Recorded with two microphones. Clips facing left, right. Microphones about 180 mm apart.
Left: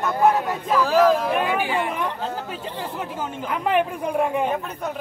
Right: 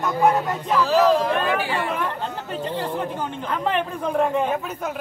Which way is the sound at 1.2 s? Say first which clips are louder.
Even; 15° left (ahead or behind).